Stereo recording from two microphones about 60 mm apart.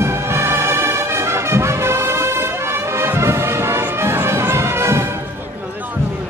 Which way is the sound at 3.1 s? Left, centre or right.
Right.